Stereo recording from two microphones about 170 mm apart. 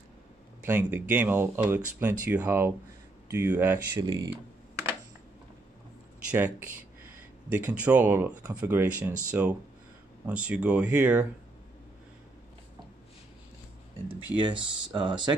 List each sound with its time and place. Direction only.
0.7 s speech: 10° right (ahead or behind)
4.0 s speech: 25° right (ahead or behind)
6.3 s speech: 10° right (ahead or behind)
14.0 s speech: 30° right (ahead or behind)